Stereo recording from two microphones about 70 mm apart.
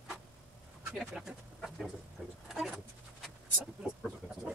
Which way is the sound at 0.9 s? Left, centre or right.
Centre.